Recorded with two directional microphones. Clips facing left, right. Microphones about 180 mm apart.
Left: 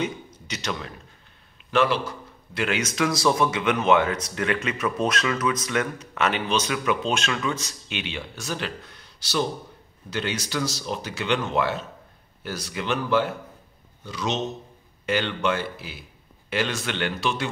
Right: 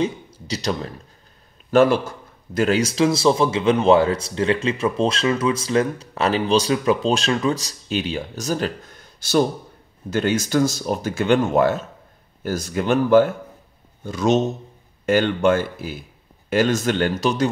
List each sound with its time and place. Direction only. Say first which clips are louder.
0.0 s a man's voice: right 5 dB; 35° right (ahead or behind)